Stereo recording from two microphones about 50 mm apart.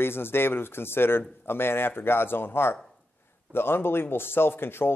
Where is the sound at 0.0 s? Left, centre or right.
Left.